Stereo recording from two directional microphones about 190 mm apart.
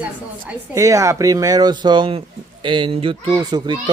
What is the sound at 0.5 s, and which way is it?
Speech, 15° right (ahead or behind).